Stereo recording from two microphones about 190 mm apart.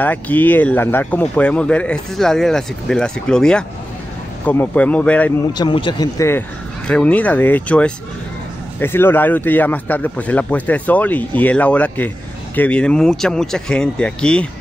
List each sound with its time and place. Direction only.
0.0 s speech: 10° left (ahead or behind)
5.5 s speech: 25° left (ahead or behind); by 14.5 s 5° left (ahead or behind)